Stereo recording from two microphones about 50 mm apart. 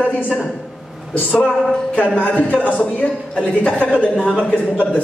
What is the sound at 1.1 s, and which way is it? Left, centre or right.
A man's voice, left.